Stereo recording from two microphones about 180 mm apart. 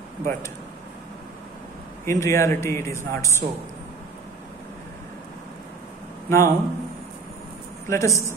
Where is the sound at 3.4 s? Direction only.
45° right (ahead or behind).